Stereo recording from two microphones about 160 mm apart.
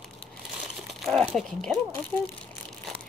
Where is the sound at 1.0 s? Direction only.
5° left (ahead or behind).